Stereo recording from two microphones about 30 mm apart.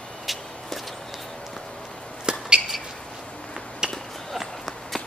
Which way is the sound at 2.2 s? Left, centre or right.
Right.